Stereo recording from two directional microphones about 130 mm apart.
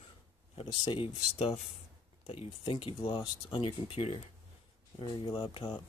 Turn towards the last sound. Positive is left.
turn(degrees=40)  # may be behind; listen again after turning